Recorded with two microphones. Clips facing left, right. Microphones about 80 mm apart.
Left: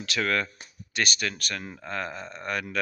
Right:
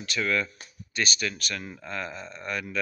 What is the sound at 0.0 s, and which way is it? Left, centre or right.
Speech, left.